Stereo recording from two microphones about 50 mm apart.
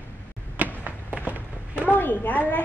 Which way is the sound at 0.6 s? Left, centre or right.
Right.